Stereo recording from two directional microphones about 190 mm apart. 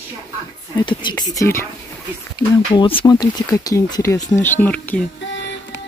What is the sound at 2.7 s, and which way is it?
Speech, 25° left (ahead or behind).